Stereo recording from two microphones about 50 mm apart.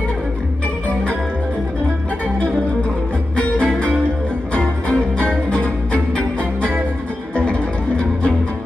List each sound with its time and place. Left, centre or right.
3.5 s music: left
7.3 s music: left